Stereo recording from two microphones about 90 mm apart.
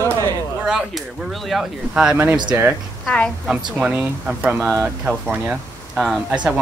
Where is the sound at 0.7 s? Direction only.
10° right (ahead or behind).